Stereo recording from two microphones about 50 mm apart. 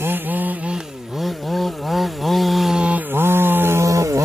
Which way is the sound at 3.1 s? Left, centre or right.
Right.